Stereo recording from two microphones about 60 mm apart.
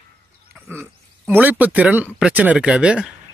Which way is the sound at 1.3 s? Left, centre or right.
Right.